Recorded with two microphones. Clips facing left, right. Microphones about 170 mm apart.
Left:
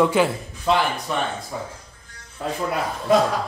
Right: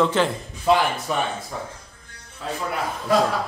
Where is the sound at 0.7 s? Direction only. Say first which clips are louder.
Right 1 dB; 5° right (ahead or behind).